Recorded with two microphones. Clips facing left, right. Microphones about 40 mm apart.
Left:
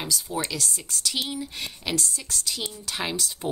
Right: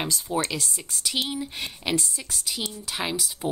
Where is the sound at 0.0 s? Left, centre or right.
Right.